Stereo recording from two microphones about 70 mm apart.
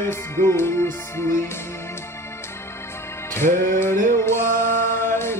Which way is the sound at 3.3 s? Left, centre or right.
Left.